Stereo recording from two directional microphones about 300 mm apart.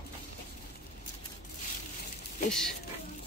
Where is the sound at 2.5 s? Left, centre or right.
Centre.